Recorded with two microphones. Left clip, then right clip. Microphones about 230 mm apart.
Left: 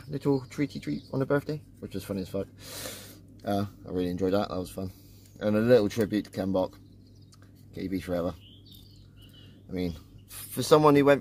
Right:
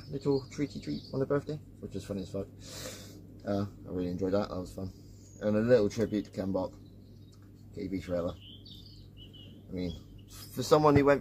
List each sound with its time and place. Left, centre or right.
0.1 s speech: left
8.1 s speech: left
10.5 s speech: left